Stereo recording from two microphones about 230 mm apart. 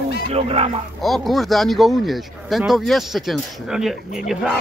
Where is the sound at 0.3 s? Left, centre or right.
Right.